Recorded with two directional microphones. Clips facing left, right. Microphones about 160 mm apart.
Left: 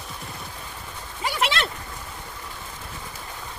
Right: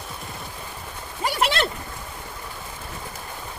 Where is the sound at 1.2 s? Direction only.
45° right (ahead or behind).